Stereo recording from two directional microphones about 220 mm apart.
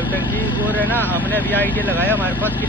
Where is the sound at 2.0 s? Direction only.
10° right (ahead or behind).